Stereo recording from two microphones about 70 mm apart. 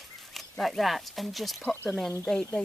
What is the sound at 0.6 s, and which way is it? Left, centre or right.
Speech, centre.